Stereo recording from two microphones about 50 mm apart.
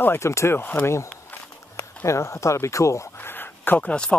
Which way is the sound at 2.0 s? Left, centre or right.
Left.